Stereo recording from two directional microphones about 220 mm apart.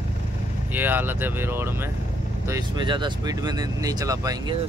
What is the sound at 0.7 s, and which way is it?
Speech, 10° right (ahead or behind).